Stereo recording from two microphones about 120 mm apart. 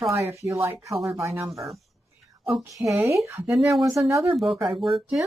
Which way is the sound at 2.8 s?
25° right (ahead or behind).